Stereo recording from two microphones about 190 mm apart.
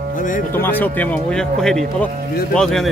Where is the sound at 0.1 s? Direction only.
45° left (ahead or behind).